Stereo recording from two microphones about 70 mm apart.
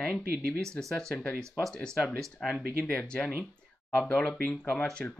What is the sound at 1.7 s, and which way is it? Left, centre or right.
Speech, centre.